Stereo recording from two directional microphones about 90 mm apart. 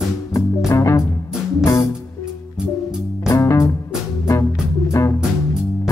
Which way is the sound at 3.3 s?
35° left (ahead or behind).